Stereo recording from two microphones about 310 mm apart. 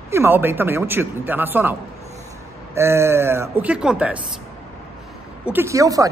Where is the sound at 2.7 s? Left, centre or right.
Centre.